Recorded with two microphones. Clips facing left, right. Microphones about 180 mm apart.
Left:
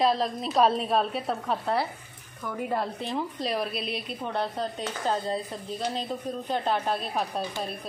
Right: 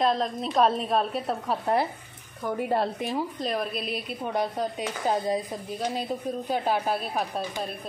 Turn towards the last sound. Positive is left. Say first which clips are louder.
# even
turn(degrees=-5)  # may be behind; listen again after turning